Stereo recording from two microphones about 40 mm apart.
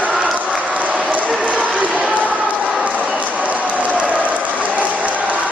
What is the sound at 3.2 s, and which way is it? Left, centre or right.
Applause, right.